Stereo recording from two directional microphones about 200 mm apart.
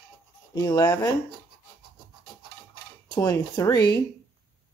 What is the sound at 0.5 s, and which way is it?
Speech, 20° left (ahead or behind).